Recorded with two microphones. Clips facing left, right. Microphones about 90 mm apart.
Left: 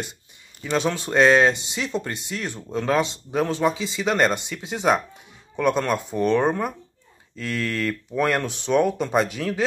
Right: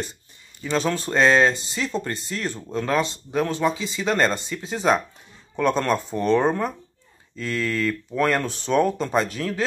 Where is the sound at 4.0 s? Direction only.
15° left (ahead or behind).